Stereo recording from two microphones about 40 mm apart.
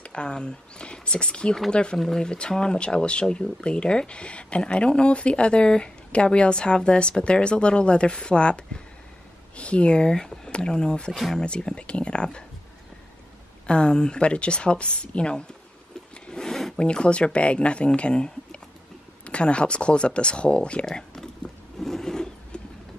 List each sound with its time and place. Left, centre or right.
0.0 s speech: left
2.0 s speech: centre
2.2 s speech: left
13.7 s speech: left
16.3 s a sound: centre
16.7 s speech: left
20.8 s typing: centre
21.7 s a sound: centre